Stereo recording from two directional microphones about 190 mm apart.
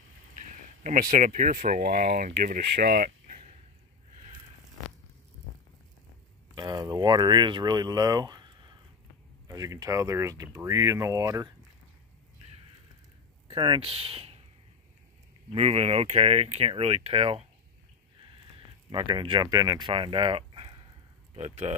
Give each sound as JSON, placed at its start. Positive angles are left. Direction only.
{"t": 0.4, "sound": "speech", "side_deg": -45}
{"t": 6.5, "sound": "speech", "side_deg": -20}
{"t": 13.5, "sound": "speech", "side_deg": -25}
{"t": 15.5, "sound": "speech", "side_deg": -35}
{"t": 18.9, "sound": "speech", "side_deg": -25}